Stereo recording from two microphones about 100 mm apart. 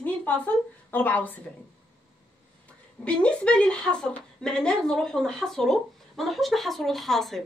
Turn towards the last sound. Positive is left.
turn(degrees=5)  # may be behind; listen again after turning